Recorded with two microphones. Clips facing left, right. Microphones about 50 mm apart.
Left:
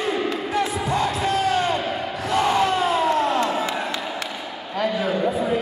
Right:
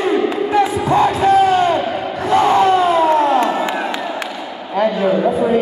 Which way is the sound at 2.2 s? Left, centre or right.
Right.